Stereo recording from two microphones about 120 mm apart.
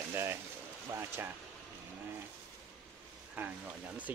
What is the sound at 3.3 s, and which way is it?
Speech, 15° right (ahead or behind).